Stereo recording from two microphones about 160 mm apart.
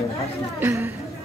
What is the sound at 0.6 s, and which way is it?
Speech, 15° right (ahead or behind).